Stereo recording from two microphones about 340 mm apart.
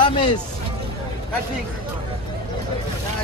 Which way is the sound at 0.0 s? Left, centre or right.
Centre.